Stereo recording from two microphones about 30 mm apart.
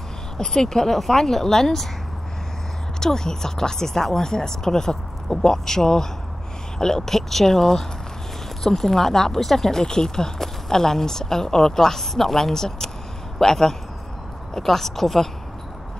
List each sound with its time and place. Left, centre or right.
0.5 s a woman's voice: centre
3.0 s a woman's voice: centre